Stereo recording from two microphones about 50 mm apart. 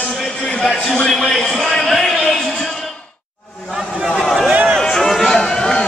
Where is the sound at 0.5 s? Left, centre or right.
Centre.